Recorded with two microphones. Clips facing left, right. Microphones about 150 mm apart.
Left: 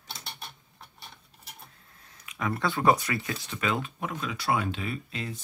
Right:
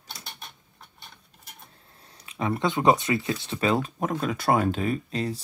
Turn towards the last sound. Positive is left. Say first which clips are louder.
# right 8 dB
turn(degrees=-40)  # may be behind; listen again after turning